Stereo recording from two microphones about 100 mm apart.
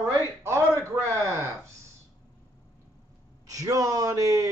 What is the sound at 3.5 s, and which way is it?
Speech, 35° right (ahead or behind).